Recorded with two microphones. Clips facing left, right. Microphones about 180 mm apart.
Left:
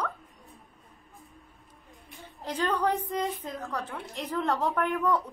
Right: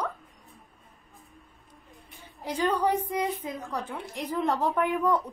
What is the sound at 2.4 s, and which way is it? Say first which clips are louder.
A woman's voice: right 2 dB; 10° right (ahead or behind).